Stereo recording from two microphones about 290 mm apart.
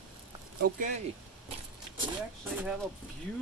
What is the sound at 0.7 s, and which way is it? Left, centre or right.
Speech, right.